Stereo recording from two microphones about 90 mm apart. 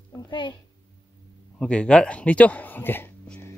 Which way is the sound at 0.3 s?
60° left (ahead or behind).